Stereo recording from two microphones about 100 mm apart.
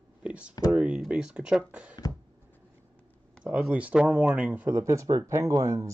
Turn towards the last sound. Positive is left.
turn(degrees=-30)  # may be behind; listen again after turning